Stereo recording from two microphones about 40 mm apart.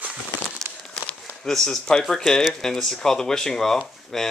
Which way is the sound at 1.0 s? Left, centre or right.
Centre.